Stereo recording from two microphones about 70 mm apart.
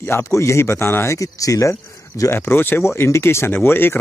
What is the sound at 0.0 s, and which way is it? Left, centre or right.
Speech, left.